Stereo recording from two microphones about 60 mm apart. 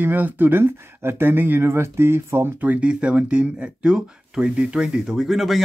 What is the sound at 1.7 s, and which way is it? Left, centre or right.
Speech, right.